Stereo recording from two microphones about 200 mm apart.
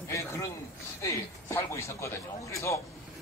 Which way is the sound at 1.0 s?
15° left (ahead or behind).